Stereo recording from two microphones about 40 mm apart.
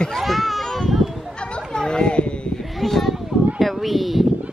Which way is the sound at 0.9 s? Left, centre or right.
Centre.